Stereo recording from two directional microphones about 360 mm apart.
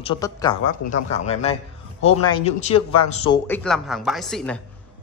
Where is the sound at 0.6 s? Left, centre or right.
Left.